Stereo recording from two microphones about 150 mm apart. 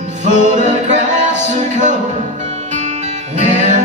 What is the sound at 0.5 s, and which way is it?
Music, 55° right (ahead or behind).